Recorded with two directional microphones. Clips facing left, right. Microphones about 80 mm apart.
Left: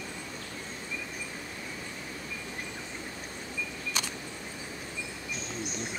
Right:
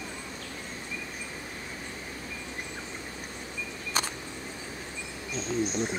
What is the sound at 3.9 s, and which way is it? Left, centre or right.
Single-lens reflex camera, right.